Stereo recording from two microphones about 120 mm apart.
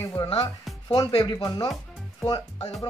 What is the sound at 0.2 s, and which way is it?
Speech, 35° left (ahead or behind).